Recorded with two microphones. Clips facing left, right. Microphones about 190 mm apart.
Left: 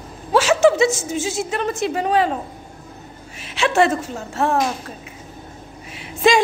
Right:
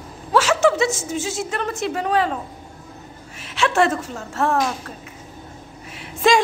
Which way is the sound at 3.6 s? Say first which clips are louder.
Left 2 dB; 15° left (ahead or behind).